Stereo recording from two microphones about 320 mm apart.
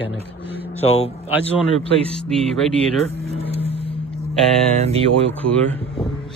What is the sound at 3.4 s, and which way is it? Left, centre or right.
Vehicle, centre.